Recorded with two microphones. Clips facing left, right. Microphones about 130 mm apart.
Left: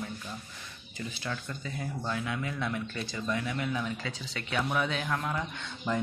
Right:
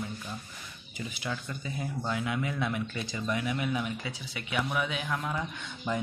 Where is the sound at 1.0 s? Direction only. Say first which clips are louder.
Right 1 dB; 15° right (ahead or behind).